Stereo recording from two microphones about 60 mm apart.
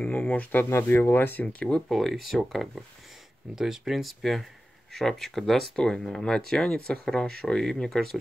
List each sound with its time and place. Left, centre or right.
0.1 s speech: left
0.7 s speech: left
1.9 s speech: centre